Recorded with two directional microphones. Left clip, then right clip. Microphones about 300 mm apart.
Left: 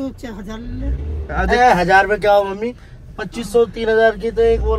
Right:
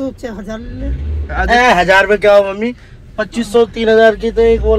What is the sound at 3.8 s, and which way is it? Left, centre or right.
Speech, centre.